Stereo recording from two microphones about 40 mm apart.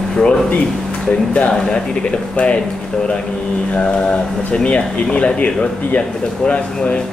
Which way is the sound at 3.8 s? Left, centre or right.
Left.